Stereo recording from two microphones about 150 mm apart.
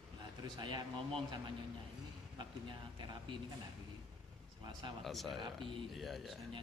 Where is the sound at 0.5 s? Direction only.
30° right (ahead or behind).